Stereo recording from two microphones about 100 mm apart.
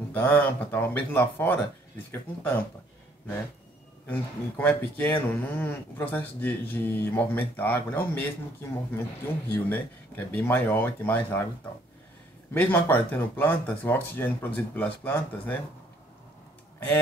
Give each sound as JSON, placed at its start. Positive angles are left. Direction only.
{"t": 0.1, "sound": "a man's voice", "side_deg": 15}
{"t": 4.1, "sound": "a man's voice", "side_deg": 20}
{"t": 9.5, "sound": "a man's voice", "side_deg": 15}
{"t": 12.5, "sound": "a man's voice", "side_deg": 20}